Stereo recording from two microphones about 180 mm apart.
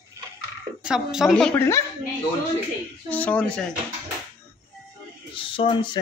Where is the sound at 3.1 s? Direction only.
10° left (ahead or behind).